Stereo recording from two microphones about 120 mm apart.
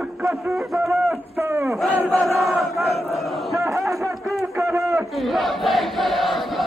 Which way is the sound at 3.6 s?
25° right (ahead or behind).